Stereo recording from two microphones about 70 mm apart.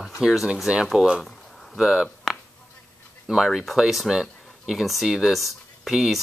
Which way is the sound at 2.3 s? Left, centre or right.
Centre.